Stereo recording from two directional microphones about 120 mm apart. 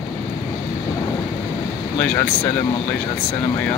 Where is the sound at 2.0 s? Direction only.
15° left (ahead or behind).